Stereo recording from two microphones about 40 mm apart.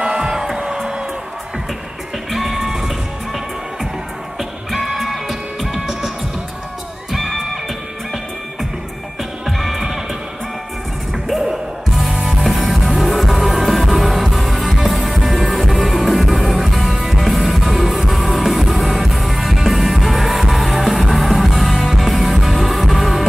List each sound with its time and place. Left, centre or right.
0.0 s music: right
2.3 s music: centre
4.4 s music: centre
9.5 s music: centre
12.0 s music: centre